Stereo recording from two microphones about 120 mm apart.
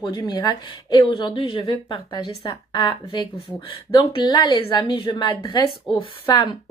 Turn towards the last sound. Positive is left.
turn(degrees=40)  # may be behind; listen again after turning